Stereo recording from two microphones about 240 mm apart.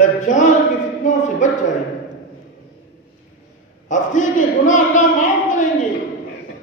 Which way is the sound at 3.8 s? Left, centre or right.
Left.